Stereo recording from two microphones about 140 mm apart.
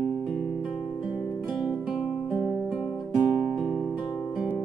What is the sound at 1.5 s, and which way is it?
Music, centre (ahead or behind).